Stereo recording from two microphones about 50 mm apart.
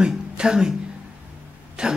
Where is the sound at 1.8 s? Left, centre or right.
Centre.